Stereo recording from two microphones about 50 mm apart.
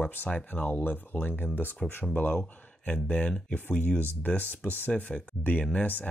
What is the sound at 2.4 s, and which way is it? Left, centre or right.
Speech, left.